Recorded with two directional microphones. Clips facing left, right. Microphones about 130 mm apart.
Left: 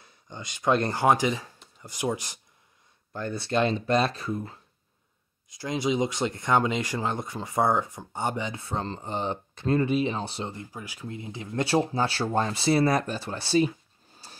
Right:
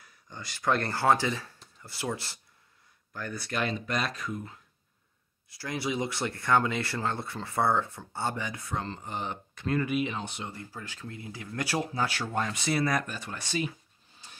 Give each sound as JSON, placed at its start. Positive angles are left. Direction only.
{"t": 0.0, "sound": "speech", "side_deg": 25}
{"t": 3.1, "sound": "speech", "side_deg": 25}
{"t": 5.5, "sound": "speech", "side_deg": 20}
{"t": 10.6, "sound": "speech", "side_deg": 15}
{"t": 14.1, "sound": "zipper", "side_deg": 35}